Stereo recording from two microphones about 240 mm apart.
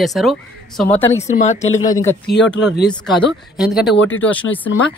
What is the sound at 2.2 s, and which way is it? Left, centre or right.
Speech, left.